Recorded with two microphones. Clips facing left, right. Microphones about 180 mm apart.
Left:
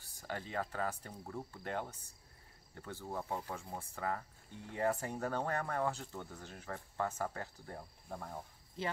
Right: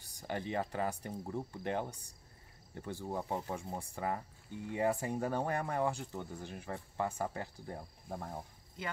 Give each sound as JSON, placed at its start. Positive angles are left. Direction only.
{"t": 0.0, "sound": "speech", "side_deg": -15}